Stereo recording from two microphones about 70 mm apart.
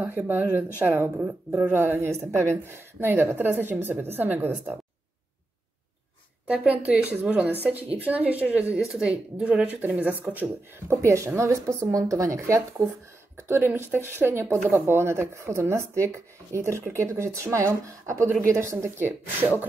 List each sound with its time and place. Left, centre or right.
0.0 s a woman's voice: right
6.4 s a woman's voice: right
8.7 s a woman's voice: centre
9.8 s a woman's voice: right
11.1 s speech: right
13.5 s a woman's voice: right